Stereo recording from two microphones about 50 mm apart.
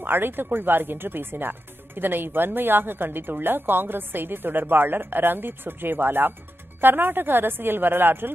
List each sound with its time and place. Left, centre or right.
0.0 s speech: right